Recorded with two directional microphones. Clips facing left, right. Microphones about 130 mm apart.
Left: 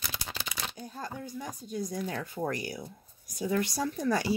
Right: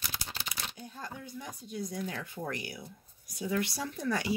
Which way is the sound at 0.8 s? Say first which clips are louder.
Left 4 dB; 40° left (ahead or behind).